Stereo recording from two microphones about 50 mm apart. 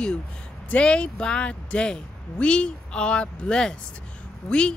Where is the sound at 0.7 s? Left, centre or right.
Left.